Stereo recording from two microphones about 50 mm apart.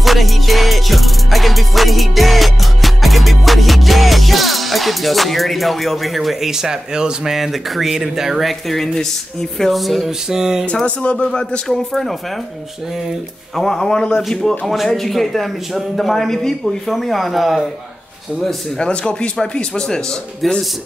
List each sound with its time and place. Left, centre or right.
0.0 s music: centre
7.3 s music: centre
11.0 s speech: left
11.6 s music: centre
13.6 s speech: centre
14.7 s music: centre
18.8 s speech: centre
20.4 s music: centre